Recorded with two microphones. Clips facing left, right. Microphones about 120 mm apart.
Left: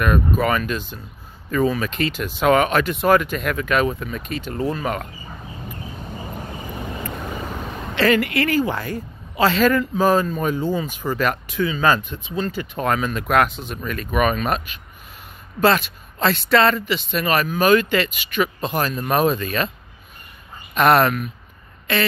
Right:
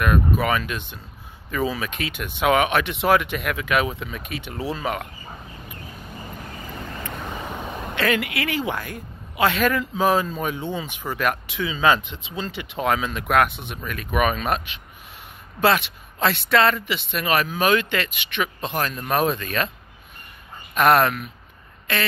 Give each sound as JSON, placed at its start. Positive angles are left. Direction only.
{"t": 0.0, "sound": "speech", "side_deg": -5}
{"t": 7.0, "sound": "vehicle", "side_deg": 0}
{"t": 8.9, "sound": "speech", "side_deg": 0}
{"t": 12.0, "sound": "speech", "side_deg": -90}
{"t": 12.8, "sound": "speech", "side_deg": -5}
{"t": 15.6, "sound": "speech", "side_deg": -5}
{"t": 20.7, "sound": "speech", "side_deg": 0}